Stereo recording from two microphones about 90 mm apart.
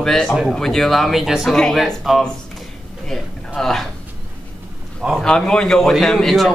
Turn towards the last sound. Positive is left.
turn(degrees=0)  # may be behind; listen again after turning